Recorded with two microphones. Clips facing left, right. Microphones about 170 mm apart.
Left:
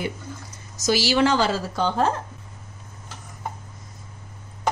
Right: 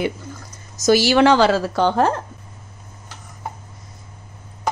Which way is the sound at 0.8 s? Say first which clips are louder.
Right 6 dB; 55° right (ahead or behind).